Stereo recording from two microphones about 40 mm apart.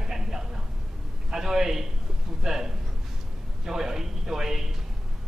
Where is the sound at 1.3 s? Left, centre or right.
Centre.